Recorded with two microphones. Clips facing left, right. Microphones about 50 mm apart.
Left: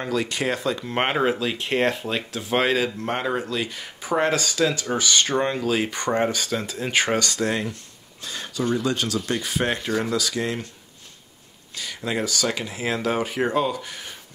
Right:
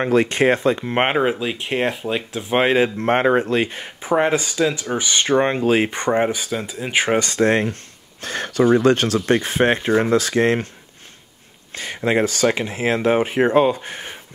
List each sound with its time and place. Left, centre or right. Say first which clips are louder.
0.0 s speech: right 8 dB; right
4.1 s speech: right 4 dB; right
6.2 s speech: right 2 dB; centre
7.2 s speech: right 7 dB; right
11.7 s speech: right 8 dB; right